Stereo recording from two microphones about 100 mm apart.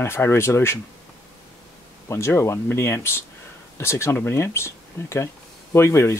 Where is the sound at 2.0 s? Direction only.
25° left (ahead or behind).